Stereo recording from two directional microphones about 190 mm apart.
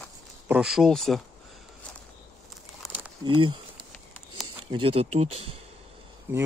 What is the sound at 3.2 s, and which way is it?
Speech, 25° right (ahead or behind).